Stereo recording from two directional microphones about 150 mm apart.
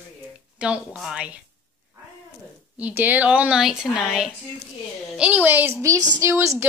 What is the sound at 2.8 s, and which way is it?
Speech, 10° right (ahead or behind).